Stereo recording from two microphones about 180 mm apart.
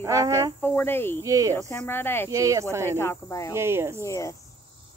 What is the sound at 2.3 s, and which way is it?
Speech, 20° right (ahead or behind).